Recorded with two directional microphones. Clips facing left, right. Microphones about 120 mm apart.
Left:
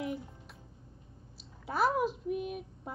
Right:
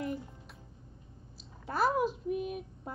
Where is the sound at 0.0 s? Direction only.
Centre (ahead or behind).